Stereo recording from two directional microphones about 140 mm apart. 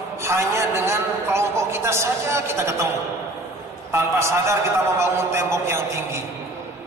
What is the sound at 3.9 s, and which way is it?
A man's voice, 20° right (ahead or behind).